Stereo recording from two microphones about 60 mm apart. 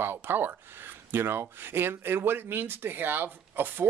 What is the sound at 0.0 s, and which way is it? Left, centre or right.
Speech, right.